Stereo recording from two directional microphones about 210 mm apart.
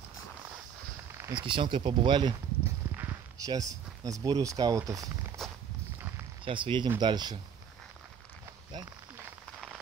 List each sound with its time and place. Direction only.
1.1 s a sound: 10° right (ahead or behind)
1.4 s speech: 25° right (ahead or behind)
3.0 s walk: 15° right (ahead or behind)
4.0 s speech: 15° right (ahead or behind)
5.4 s walk: centre (ahead or behind)
6.4 s speech: 25° right (ahead or behind)